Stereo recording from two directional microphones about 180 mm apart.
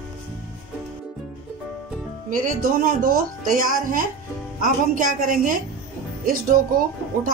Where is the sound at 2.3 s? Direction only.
45° right (ahead or behind).